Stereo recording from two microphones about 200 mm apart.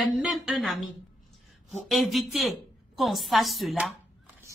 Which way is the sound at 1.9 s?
Centre (ahead or behind).